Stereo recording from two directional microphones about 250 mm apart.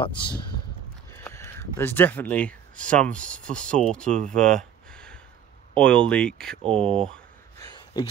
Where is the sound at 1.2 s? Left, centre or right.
Centre.